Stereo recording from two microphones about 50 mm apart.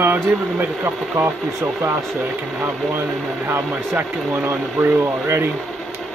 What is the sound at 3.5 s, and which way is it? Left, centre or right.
Speech, right.